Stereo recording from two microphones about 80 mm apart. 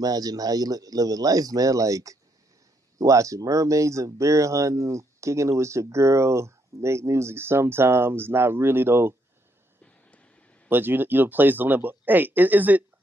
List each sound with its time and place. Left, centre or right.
0.0 s speech: right
9.8 s a sound: centre
10.7 s speech: right